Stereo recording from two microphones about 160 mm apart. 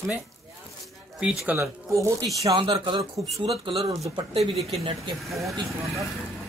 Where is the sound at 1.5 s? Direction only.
20° right (ahead or behind); by 3.8 s 35° right (ahead or behind).